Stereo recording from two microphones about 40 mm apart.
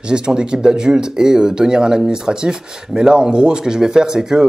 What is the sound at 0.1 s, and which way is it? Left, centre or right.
Speech, centre.